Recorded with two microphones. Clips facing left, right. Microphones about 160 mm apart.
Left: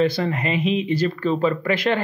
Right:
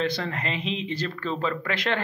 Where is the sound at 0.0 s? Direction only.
5° left (ahead or behind).